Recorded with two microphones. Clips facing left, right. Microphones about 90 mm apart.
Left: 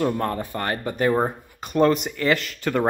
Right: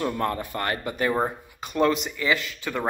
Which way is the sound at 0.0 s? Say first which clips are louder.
Left 3 dB; 35° left (ahead or behind).